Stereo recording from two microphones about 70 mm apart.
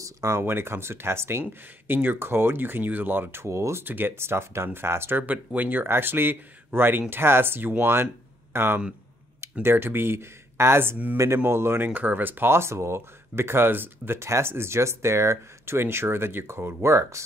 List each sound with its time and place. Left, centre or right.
0.0 s a sound: right
0.4 s speech: right
3.8 s speech: right
11.9 s speech: right